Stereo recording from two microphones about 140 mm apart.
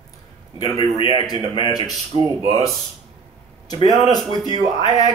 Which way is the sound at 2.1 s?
45° right (ahead or behind).